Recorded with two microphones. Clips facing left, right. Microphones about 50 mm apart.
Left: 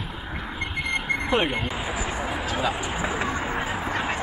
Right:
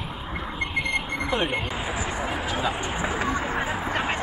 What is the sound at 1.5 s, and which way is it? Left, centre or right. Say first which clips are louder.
Speech: even; centre.